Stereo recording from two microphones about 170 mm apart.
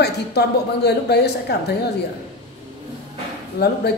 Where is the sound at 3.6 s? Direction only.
75° left (ahead or behind).